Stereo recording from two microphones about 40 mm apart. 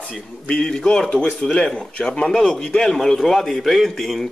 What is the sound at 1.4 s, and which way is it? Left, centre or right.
A man's voice, left.